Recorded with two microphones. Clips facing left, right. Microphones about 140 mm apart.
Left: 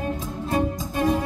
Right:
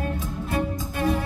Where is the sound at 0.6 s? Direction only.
15° left (ahead or behind).